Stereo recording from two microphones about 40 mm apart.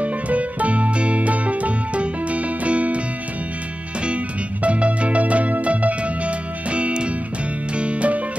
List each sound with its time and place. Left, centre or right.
0.0 s music: right
4.6 s music: right